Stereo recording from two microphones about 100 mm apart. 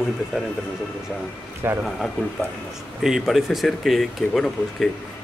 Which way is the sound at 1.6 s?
25° right (ahead or behind).